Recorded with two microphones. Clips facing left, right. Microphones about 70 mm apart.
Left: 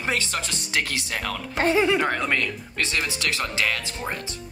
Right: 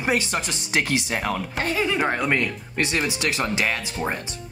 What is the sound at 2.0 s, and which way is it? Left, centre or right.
Speech, centre.